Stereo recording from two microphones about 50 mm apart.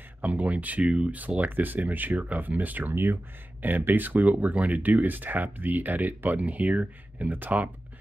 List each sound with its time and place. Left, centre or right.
0.2 s speech: right
1.4 s speech: right